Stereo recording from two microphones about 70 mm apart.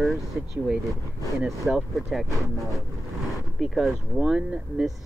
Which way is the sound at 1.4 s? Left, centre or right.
Centre.